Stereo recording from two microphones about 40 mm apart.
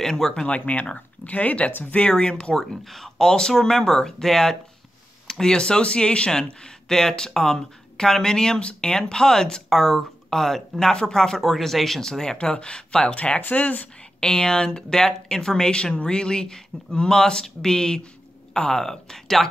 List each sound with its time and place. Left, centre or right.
0.0 s speech: centre
0.5 s speech: left
2.0 s speech: left
2.6 s speech: centre
12.4 s speech: left
13.1 s speech: left
14.2 s speech: centre